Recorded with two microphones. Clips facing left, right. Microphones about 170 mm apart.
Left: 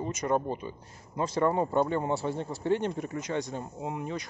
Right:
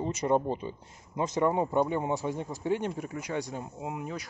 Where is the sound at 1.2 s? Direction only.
15° right (ahead or behind).